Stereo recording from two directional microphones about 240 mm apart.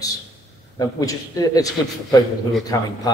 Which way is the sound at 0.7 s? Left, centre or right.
Centre.